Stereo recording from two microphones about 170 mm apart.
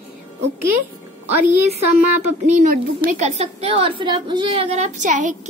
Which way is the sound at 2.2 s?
50° right (ahead or behind).